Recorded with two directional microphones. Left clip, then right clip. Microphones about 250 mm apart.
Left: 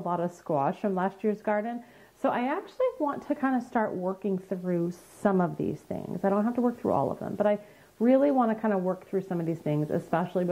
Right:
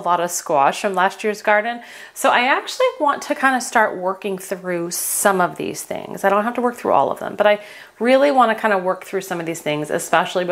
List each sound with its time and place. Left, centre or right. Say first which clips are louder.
0.1 s speech: right 12 dB; centre
3.9 s a woman's voice: right 8 dB; centre